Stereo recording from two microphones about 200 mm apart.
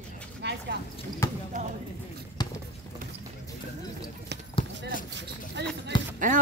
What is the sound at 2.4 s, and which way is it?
Music, 20° left (ahead or behind).